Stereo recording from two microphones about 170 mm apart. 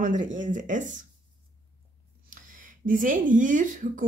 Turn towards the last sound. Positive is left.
turn(degrees=-50)  # may be behind; listen again after turning